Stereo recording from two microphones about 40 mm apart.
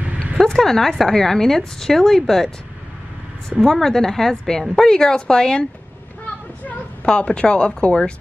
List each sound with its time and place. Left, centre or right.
0.4 s a woman's voice: centre
3.6 s a woman's voice: centre
7.1 s speech: left